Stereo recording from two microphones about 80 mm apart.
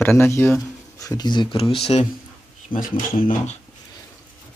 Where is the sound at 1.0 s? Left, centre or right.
Left.